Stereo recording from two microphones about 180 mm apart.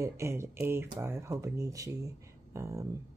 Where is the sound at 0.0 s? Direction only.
15° right (ahead or behind).